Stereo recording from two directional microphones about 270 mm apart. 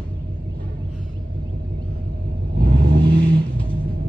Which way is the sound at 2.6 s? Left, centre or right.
Right.